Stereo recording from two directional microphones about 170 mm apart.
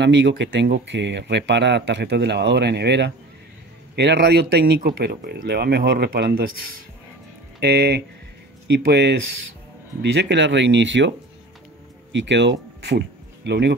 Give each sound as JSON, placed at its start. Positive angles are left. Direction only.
{"t": 0.0, "sound": "speech", "side_deg": -90}
{"t": 7.6, "sound": "speech", "side_deg": -75}
{"t": 10.1, "sound": "speech", "side_deg": -90}